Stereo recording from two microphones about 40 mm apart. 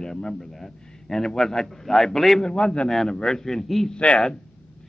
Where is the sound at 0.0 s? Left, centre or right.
Centre.